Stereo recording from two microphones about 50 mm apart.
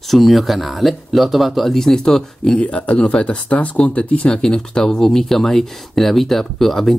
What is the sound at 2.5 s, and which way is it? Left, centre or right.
Speech, left.